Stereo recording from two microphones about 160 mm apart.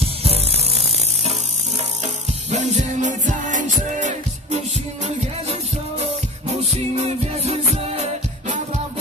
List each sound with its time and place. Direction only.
0.0 s ratchet: 40° right (ahead or behind)
2.5 s music: 50° right (ahead or behind)
7.4 s music: 40° right (ahead or behind)